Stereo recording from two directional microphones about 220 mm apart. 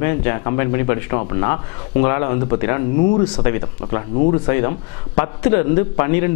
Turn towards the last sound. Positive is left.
turn(degrees=15)  # may be behind; listen again after turning